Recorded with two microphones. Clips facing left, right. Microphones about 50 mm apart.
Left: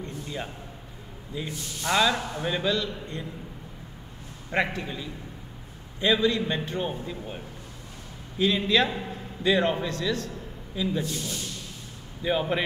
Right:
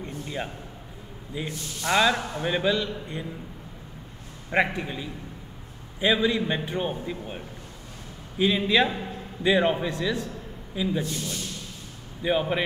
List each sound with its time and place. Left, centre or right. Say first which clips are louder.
0.0 s a sound: right 2 dB; centre
1.3 s a man's voice: right 1 dB; centre
4.5 s a man's voice: right 3 dB; centre
12.2 s a man's voice: right 1 dB; centre